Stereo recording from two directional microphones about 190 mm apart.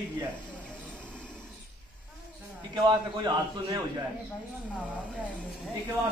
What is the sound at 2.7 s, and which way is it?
A man's voice, 20° right (ahead or behind).